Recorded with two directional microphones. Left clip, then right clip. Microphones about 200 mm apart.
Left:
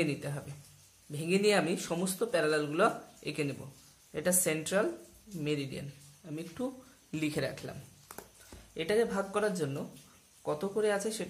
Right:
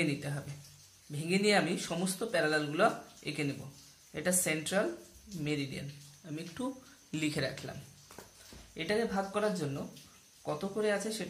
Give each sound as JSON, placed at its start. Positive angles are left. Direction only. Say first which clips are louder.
{"t": 0.0, "sound": "speech", "louder": "left 1 dB", "side_deg": 15}
{"t": 8.7, "sound": "speech", "louder": "left 3 dB", "side_deg": 20}